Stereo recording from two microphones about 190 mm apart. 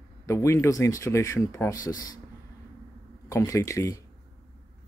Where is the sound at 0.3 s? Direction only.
15° left (ahead or behind).